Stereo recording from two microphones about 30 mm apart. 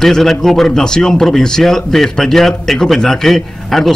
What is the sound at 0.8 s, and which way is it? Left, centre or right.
A man's voice, left.